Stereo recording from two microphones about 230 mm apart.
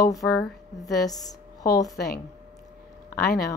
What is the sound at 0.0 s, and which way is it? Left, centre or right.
Speech, centre.